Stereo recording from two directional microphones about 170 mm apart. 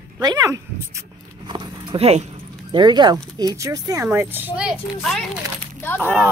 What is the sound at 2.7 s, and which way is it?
Speech, 25° right (ahead or behind).